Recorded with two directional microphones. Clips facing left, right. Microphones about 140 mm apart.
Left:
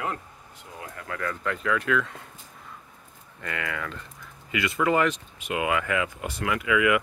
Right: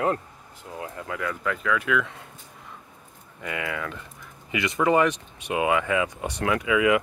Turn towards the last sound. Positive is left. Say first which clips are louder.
# right 2 dB
turn(degrees=-25)  # may be behind; listen again after turning